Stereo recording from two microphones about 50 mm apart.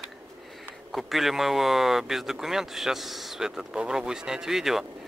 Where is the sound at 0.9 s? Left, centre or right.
Centre.